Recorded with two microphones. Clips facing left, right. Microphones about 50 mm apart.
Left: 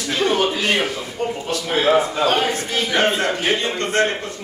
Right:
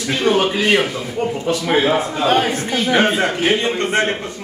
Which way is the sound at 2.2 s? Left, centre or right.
Centre.